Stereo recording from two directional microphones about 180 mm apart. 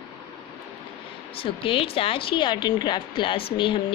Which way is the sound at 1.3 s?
30° left (ahead or behind).